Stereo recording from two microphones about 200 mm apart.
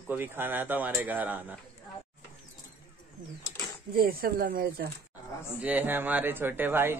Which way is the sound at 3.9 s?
50° right (ahead or behind).